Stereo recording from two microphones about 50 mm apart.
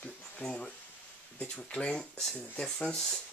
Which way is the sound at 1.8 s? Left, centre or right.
Centre.